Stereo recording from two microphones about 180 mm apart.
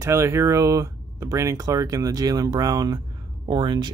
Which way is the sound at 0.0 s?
15° right (ahead or behind).